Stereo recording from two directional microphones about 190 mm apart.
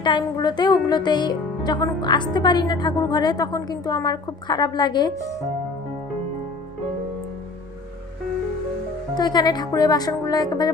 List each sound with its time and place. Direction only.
0.0 s speech: 25° left (ahead or behind)
9.1 s speech: 20° left (ahead or behind)